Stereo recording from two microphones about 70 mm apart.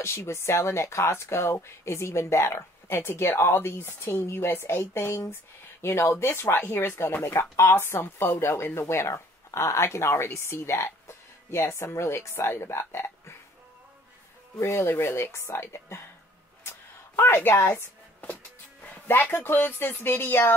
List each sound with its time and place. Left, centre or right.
0.0 s speech: left
14.6 s speech: left
16.6 s a sound: left